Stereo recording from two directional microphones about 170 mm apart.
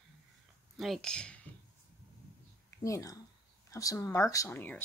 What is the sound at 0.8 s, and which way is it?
Speech, centre (ahead or behind).